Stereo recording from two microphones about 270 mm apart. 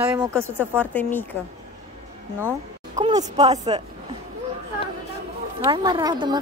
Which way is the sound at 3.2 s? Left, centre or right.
Right.